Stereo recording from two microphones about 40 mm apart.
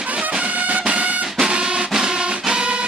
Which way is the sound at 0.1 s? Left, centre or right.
Right.